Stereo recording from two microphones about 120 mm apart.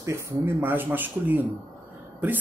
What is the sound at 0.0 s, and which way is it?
Speech, 20° right (ahead or behind).